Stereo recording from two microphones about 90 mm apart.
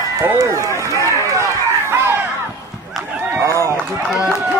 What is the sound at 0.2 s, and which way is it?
Run, 35° right (ahead or behind).